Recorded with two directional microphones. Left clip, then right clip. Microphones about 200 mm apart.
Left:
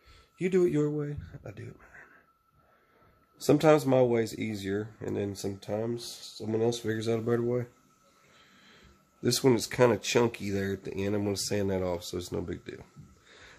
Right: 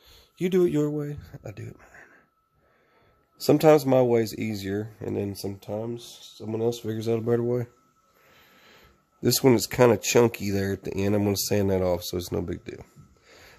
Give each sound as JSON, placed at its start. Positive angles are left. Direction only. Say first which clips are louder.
{"t": 0.1, "sound": "speech", "louder": "right 3 dB", "side_deg": -45}
{"t": 3.3, "sound": "speech", "louder": "right 4 dB", "side_deg": -45}
{"t": 5.9, "sound": "speech", "louder": "even", "side_deg": -15}
{"t": 13.3, "sound": "a sound", "louder": "right 2 dB", "side_deg": -40}